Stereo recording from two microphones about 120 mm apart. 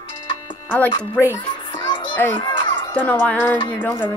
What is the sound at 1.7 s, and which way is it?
Children playing, 40° left (ahead or behind).